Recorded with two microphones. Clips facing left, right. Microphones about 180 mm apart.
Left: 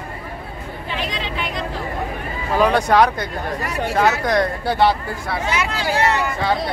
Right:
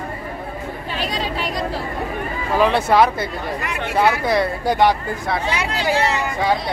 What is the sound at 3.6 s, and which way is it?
Speech, 35° left (ahead or behind).